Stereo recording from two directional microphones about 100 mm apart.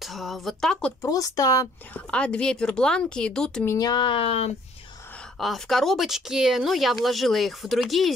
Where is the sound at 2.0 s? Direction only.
10° left (ahead or behind).